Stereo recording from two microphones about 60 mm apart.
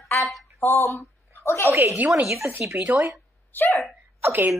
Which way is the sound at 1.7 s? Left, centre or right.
Right.